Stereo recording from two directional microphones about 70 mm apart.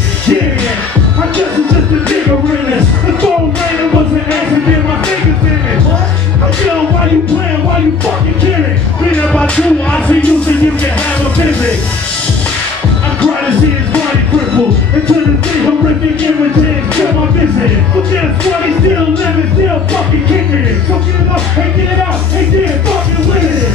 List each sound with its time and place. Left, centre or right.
9.3 s music: centre